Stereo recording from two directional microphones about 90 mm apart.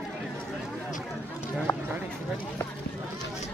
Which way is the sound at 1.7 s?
15° left (ahead or behind).